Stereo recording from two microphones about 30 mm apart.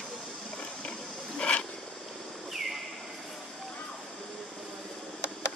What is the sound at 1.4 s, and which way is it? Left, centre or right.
Wild animals, left.